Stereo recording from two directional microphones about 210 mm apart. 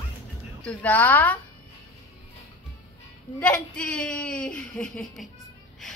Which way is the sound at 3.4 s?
5° left (ahead or behind).